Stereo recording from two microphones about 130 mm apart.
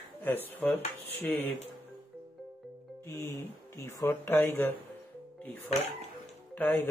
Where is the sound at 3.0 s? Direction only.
20° left (ahead or behind).